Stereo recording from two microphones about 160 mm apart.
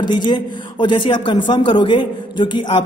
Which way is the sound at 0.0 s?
25° left (ahead or behind).